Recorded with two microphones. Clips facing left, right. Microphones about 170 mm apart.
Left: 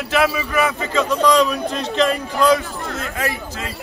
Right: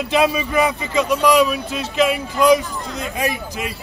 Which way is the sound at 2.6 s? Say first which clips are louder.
Even; 60° left (ahead or behind).